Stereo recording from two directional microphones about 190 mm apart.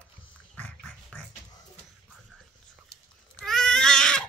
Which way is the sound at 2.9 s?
55° left (ahead or behind).